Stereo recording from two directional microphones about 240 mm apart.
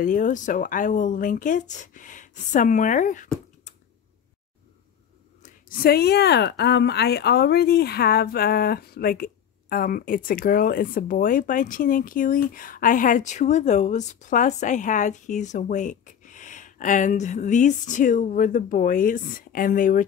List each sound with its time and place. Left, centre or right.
0.0 s speech: left
5.4 s speech: left